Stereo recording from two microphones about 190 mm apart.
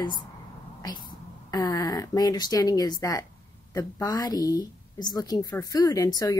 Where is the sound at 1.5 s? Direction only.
20° left (ahead or behind).